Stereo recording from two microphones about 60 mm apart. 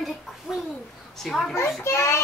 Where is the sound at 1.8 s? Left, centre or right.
Left.